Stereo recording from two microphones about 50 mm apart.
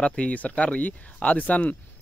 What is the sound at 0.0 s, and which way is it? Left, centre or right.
Speech, left.